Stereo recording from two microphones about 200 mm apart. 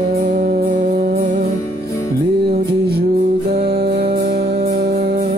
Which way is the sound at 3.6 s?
55° right (ahead or behind).